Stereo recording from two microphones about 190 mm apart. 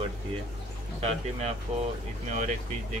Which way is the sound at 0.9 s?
35° right (ahead or behind).